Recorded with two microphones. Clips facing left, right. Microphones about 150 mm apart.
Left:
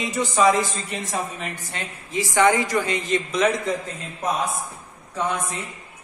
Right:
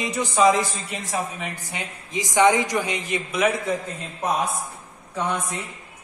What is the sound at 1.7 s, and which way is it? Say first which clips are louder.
A man's voice: left 4 dB; 15° right (ahead or behind).